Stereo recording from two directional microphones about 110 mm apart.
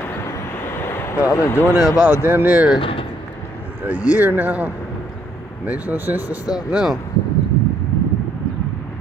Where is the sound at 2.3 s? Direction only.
15° right (ahead or behind).